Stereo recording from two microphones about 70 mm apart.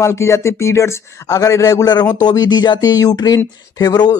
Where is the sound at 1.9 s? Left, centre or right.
Left.